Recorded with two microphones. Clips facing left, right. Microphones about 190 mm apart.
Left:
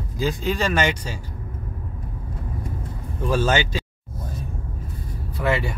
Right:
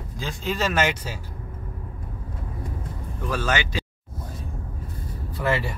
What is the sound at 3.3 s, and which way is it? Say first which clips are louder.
Speech: left 5 dB; 30° left (ahead or behind).